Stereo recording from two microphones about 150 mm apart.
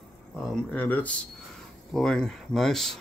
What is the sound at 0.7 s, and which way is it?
Speech, 10° left (ahead or behind).